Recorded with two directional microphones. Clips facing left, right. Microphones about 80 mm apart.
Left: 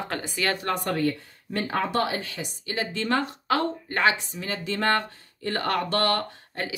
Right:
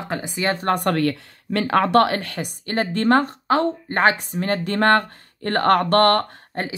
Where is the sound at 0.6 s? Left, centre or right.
Right.